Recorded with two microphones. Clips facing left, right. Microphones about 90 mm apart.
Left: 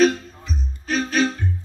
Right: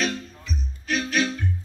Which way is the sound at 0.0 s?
40° left (ahead or behind).